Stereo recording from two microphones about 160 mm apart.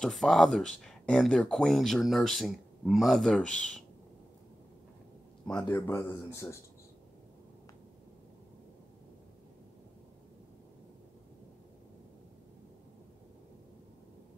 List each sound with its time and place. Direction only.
0.0 s speech: centre (ahead or behind)
5.5 s speech: 5° left (ahead or behind)
5.8 s speech: 20° left (ahead or behind)